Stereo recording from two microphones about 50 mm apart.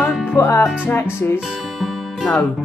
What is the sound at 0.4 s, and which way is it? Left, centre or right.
Music, left.